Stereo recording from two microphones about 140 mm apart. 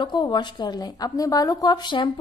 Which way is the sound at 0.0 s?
30° left (ahead or behind).